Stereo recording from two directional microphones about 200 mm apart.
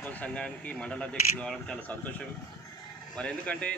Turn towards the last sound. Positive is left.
turn(degrees=5)  # may be behind; listen again after turning